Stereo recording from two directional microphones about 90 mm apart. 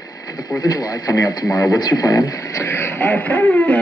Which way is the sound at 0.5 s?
45° left (ahead or behind).